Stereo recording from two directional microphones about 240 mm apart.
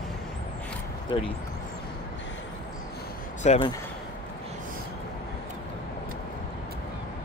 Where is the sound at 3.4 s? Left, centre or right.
Left.